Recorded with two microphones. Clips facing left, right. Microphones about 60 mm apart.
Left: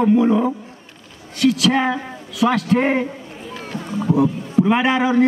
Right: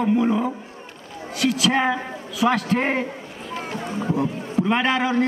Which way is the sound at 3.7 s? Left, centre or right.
Right.